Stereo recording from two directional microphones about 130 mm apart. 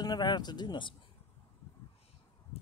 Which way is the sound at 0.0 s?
30° left (ahead or behind).